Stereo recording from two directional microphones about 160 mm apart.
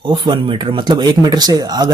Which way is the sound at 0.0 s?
30° right (ahead or behind).